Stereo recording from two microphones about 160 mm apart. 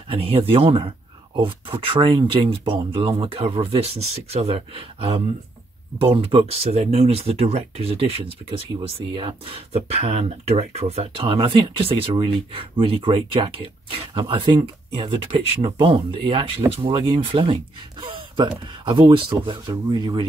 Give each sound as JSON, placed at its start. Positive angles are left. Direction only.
{"t": 0.1, "sound": "speech", "side_deg": -35}